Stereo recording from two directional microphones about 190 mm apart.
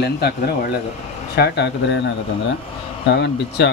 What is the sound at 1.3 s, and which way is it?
Speech, 60° left (ahead or behind).